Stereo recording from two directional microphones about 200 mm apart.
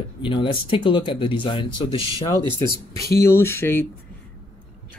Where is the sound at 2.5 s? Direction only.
15° left (ahead or behind).